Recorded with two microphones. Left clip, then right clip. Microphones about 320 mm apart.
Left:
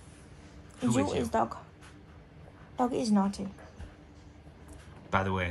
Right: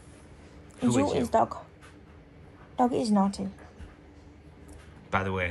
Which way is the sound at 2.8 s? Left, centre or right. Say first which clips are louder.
Right 4 dB; right.